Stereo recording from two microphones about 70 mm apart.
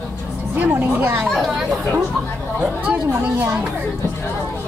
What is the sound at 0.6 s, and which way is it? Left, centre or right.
Speech, right.